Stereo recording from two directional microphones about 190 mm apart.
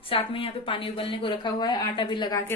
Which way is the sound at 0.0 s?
30° left (ahead or behind).